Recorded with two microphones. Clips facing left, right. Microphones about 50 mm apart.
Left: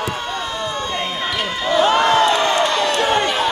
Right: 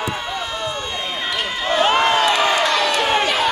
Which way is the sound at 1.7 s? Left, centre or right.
Right.